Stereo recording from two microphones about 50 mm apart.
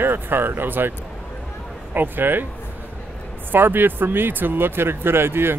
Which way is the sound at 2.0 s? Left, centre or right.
Right.